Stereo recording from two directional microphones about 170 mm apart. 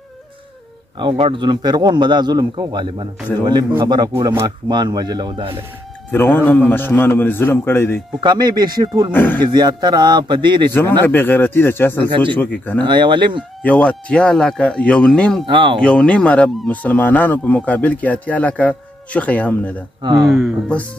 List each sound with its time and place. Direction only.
0.9 s a man's voice: 30° right (ahead or behind)
6.3 s speech: 10° left (ahead or behind)
8.2 s a man's voice: 25° right (ahead or behind)
9.1 s speech: 10° left (ahead or behind)
9.4 s a man's voice: 25° right (ahead or behind)
11.1 s speech: 10° left (ahead or behind)
12.1 s a man's voice: 30° right (ahead or behind)
13.6 s speech: 5° left (ahead or behind)
15.4 s a man's voice: 30° right (ahead or behind)
15.8 s speech: 5° left (ahead or behind)
20.0 s speech: 25° right (ahead or behind)
20.2 s speech: centre (ahead or behind)